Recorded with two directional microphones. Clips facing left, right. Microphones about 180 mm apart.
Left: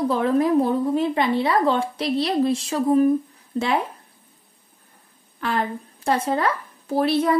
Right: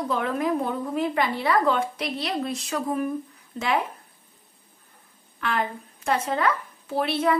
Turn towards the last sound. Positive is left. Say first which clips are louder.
# left 4 dB
turn(degrees=40)  # may be behind; listen again after turning